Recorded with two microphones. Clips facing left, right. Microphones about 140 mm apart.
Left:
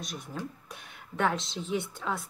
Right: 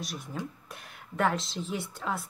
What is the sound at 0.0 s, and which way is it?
Speech, centre (ahead or behind).